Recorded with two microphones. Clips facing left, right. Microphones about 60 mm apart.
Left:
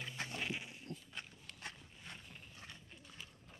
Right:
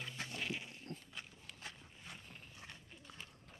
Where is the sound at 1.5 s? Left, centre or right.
Centre.